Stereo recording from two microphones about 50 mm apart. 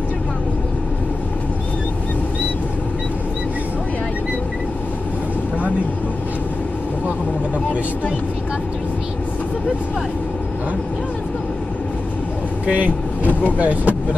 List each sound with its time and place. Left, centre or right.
12.6 s speech: right
13.2 s vehicle: left
13.6 s speech: right